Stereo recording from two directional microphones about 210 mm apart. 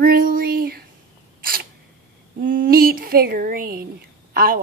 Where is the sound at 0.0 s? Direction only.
45° right (ahead or behind).